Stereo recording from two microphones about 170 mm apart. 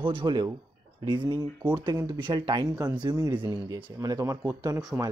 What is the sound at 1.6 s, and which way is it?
Speech, 5° right (ahead or behind).